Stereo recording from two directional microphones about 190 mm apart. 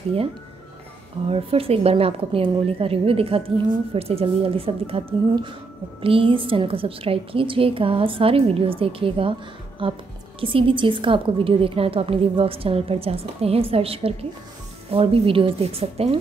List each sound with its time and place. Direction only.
1.3 s a woman's voice: 30° right (ahead or behind)